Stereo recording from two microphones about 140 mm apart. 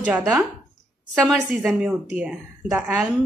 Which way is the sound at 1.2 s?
Centre (ahead or behind).